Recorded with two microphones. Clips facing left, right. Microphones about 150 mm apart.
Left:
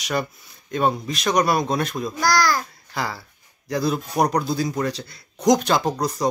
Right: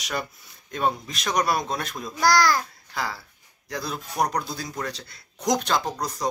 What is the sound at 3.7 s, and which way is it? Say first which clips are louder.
Speech: left 9 dB; 5° left (ahead or behind).